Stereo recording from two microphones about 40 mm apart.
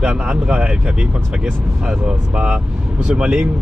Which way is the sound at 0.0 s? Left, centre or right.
Centre.